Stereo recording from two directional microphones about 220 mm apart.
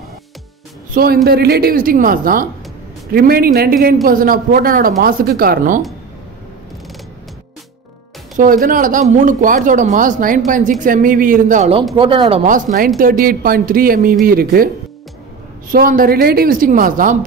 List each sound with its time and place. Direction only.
0.9 s a woman's voice: 45° right (ahead or behind)
8.4 s a woman's voice: 40° right (ahead or behind)
15.7 s speech: 40° right (ahead or behind)